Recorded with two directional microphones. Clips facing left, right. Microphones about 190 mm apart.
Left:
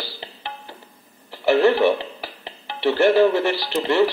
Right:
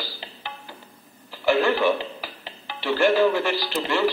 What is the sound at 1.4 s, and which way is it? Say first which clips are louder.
Telephone: left 4 dB; 20° left (ahead or behind).